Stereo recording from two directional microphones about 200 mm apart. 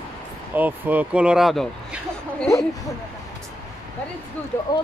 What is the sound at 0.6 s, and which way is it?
Speech, 10° right (ahead or behind).